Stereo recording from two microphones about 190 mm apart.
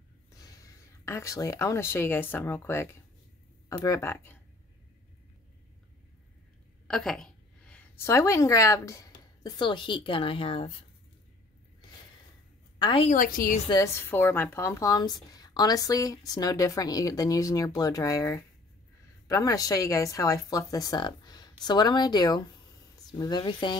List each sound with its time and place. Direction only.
0.4 s speech: 15° left (ahead or behind)
6.9 s speech: centre (ahead or behind); by 10.7 s 30° left (ahead or behind)
12.7 s a woman's voice: 25° left (ahead or behind)
13.1 s a woman's voice: 45° left (ahead or behind)
13.7 s a woman's voice: 15° left (ahead or behind)